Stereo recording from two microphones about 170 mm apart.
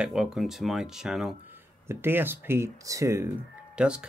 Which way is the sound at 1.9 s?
15° right (ahead or behind).